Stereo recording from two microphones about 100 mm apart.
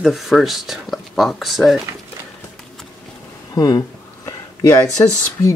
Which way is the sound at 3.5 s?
40° left (ahead or behind).